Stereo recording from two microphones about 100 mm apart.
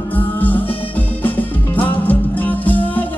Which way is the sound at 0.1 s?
15° left (ahead or behind).